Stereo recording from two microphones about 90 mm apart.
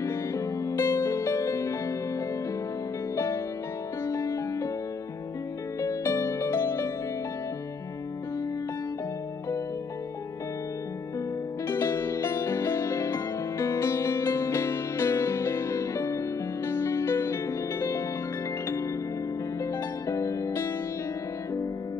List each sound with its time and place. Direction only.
0.0 s music: 35° left (ahead or behind)
4.0 s music: 35° left (ahead or behind)
5.8 s music: 35° left (ahead or behind)
11.6 s music: 30° left (ahead or behind)
19.6 s music: 35° left (ahead or behind)